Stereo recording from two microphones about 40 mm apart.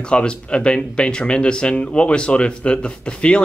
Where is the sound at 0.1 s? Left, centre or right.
Left.